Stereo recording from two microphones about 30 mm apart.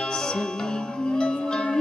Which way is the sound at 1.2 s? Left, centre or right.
Left.